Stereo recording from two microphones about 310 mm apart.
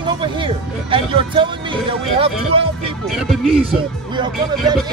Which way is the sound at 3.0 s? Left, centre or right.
Centre.